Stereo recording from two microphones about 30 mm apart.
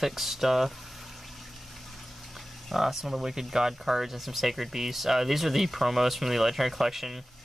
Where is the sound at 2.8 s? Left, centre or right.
Centre.